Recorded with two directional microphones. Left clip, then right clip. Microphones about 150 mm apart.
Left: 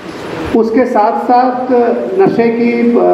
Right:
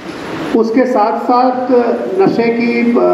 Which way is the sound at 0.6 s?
25° left (ahead or behind).